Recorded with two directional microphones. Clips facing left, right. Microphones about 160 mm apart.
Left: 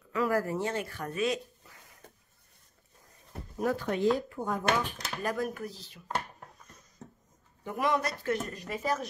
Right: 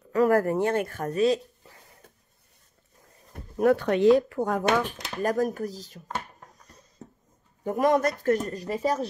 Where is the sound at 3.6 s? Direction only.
65° right (ahead or behind).